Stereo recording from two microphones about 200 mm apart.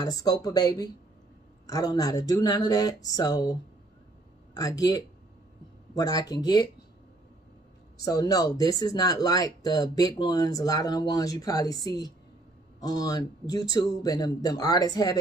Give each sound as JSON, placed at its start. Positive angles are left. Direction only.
{"t": 0.0, "sound": "speech", "side_deg": 20}
{"t": 4.6, "sound": "speech", "side_deg": 20}
{"t": 8.0, "sound": "speech", "side_deg": 20}